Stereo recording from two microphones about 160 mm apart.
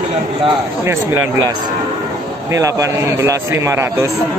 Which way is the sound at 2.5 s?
20° right (ahead or behind).